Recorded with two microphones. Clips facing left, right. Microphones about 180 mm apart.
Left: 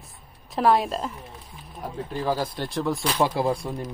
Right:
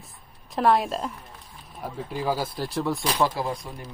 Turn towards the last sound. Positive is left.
turn(degrees=35)  # may be behind; listen again after turning